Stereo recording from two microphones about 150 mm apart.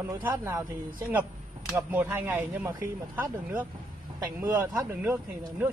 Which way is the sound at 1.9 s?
15° right (ahead or behind).